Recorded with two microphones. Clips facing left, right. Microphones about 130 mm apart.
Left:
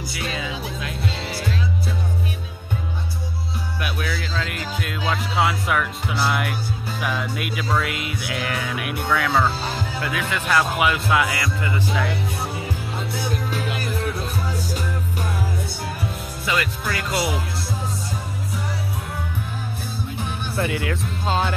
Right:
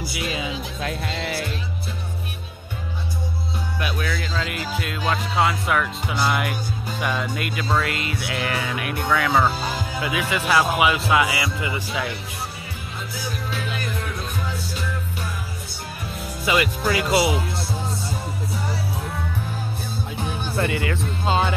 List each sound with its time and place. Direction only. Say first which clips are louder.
0.1 s speech: even; 20° right (ahead or behind)
0.7 s music: even; 45° right (ahead or behind)
3.8 s music: right 1 dB; 5° left (ahead or behind)
7.0 s speech: right 1 dB; centre (ahead or behind)
9.3 s speech: right 1 dB; 15° right (ahead or behind)
13.5 s music: left 2 dB; 10° left (ahead or behind)
16.5 s speech: right 4 dB; 10° right (ahead or behind)
20.5 s speech: even; centre (ahead or behind)